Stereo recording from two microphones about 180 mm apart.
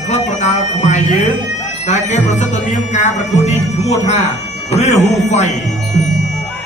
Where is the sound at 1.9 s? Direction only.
40° left (ahead or behind).